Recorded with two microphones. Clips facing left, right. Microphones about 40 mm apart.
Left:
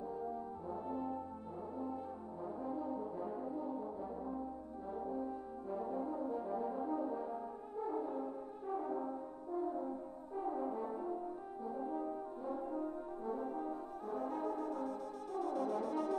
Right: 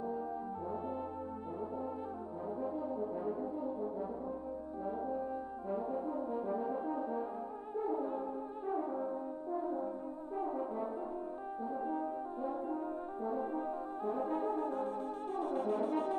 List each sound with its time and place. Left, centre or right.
0.0 s french horn: right
2.4 s brass instrument: centre
4.8 s brass instrument: right
7.7 s music: right
8.6 s brass instrument: centre
9.1 s french horn: right
10.4 s brass instrument: centre
11.6 s french horn: right